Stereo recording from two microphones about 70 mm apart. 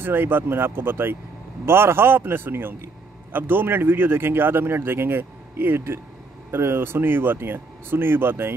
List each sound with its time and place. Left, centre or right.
0.0 s speech: right